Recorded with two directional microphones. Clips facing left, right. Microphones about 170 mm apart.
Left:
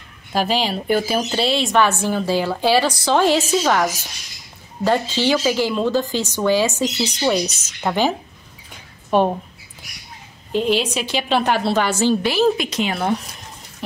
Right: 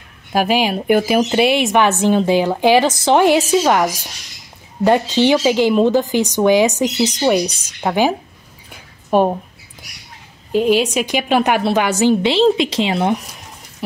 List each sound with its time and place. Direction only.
0.5 s speech: 10° right (ahead or behind)
0.8 s speech: 55° right (ahead or behind)
1.1 s speech: 15° right (ahead or behind)
10.5 s a woman's voice: 10° right (ahead or behind)